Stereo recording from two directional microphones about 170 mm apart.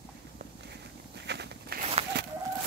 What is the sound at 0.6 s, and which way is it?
Walk, 85° right.